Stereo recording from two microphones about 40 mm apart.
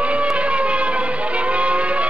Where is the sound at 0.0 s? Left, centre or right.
Right.